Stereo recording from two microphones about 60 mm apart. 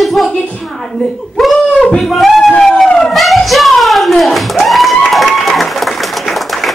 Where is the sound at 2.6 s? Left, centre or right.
Centre.